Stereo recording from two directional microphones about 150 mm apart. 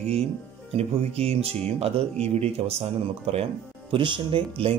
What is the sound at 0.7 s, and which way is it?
Speech, 45° right (ahead or behind).